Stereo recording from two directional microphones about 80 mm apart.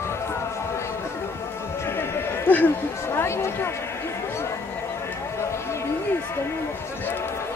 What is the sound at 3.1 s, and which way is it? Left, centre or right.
Speech, left.